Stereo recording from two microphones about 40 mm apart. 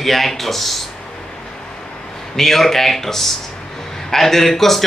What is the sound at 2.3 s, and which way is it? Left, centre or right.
Speech, centre.